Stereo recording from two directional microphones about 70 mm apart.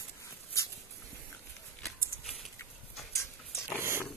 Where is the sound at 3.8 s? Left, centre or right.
Right.